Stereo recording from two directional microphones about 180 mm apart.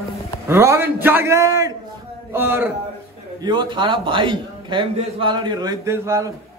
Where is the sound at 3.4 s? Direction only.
25° right (ahead or behind).